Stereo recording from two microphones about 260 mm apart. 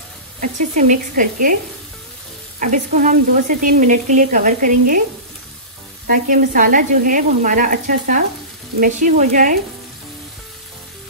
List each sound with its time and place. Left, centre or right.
0.4 s speech: right
2.6 s speech: right
6.0 s speech: right